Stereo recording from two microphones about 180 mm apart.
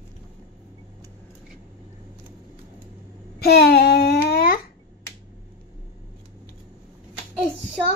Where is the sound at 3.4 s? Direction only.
65° left (ahead or behind).